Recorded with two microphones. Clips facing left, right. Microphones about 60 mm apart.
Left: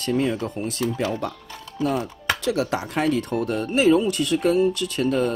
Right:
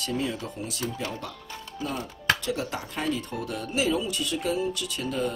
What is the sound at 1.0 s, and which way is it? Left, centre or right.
Speech, left.